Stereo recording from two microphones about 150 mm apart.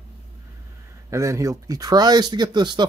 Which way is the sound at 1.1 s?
20° right (ahead or behind).